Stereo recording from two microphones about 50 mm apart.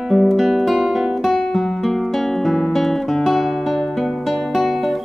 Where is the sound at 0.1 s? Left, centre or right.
Centre.